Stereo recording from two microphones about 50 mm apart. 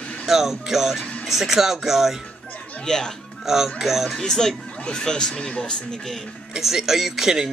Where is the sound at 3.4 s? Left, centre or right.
Centre.